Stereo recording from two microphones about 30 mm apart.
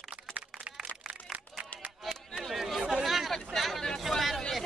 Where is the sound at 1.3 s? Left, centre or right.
Right.